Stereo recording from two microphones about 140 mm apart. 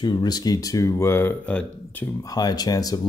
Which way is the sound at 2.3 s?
30° left (ahead or behind).